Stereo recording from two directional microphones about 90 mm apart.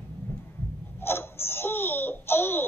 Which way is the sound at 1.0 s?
25° left (ahead or behind).